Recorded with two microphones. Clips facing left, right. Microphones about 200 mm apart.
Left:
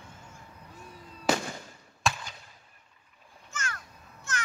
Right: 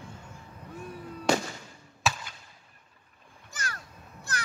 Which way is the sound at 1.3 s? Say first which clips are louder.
Right 2 dB; 5° left (ahead or behind).